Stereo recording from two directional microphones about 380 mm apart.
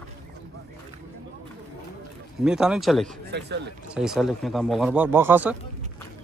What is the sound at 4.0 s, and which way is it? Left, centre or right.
Speech, centre.